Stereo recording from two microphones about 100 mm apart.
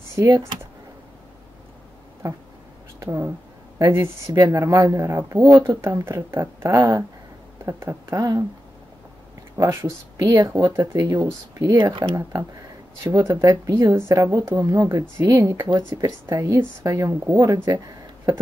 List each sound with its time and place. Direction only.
0.1 s speech: 30° right (ahead or behind)
2.2 s speech: 30° right (ahead or behind)
3.0 s a sound: 30° right (ahead or behind)
3.7 s speech: 30° right (ahead or behind)
9.6 s speech: 30° right (ahead or behind)
10.5 s speech: 20° right (ahead or behind)